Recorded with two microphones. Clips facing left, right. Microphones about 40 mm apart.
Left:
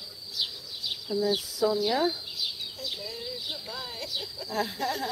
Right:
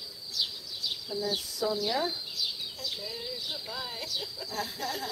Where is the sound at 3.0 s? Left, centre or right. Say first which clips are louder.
Left 1 dB; centre.